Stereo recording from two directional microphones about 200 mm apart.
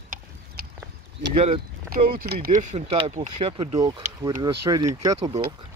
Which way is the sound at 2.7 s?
35° right (ahead or behind).